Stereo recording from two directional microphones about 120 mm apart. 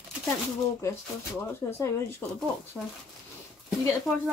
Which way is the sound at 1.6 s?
20° left (ahead or behind).